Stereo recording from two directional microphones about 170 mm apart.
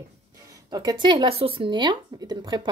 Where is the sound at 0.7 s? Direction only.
25° right (ahead or behind).